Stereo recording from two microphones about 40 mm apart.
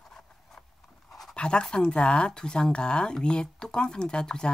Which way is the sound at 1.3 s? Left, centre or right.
Left.